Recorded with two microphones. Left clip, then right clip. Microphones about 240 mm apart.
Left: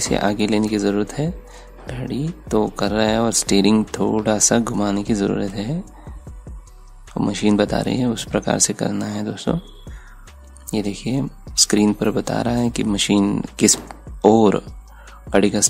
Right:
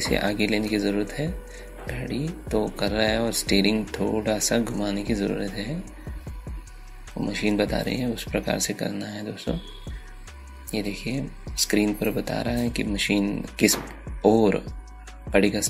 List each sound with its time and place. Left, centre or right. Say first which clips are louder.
0.0 s speech: left 4 dB; centre
2.7 s speech: left 5 dB; left
7.2 s speech: left 6 dB; left
10.7 s speech: left 5 dB; left